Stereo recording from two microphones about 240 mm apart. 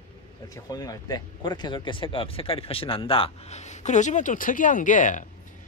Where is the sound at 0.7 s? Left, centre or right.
Centre.